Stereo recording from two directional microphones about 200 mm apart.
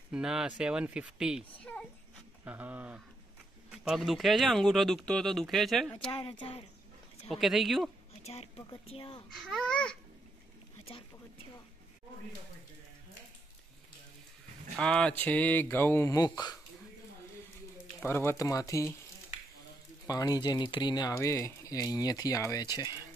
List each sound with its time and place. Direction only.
0.1 s speech: 5° right (ahead or behind)
1.6 s a sound: 5° left (ahead or behind)
2.4 s speech: 10° right (ahead or behind)
6.1 s speech: 30° left (ahead or behind)
7.2 s speech: centre (ahead or behind)
8.3 s speech: 30° left (ahead or behind)
9.3 s speech: centre (ahead or behind)
14.8 s speech: 5° left (ahead or behind); by 16.5 s 20° left (ahead or behind)
18.0 s speech: 10° left (ahead or behind)
20.1 s speech: 20° left (ahead or behind)